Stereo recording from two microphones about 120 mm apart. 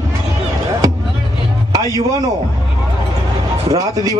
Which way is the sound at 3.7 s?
30° right (ahead or behind).